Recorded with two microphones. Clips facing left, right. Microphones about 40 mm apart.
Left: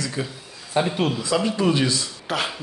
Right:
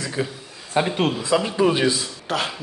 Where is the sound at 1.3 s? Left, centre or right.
Centre.